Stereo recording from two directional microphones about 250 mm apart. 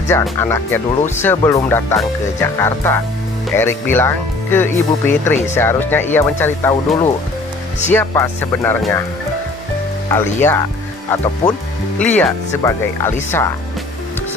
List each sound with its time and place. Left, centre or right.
0.1 s speech: centre
10.0 s speech: centre